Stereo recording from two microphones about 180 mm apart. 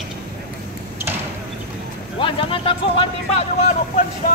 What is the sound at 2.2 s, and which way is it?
Speech, 30° left (ahead or behind).